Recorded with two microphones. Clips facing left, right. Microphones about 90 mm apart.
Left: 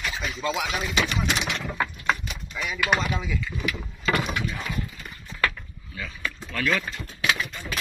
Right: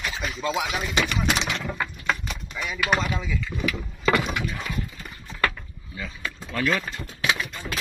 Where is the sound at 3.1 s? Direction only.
15° left (ahead or behind).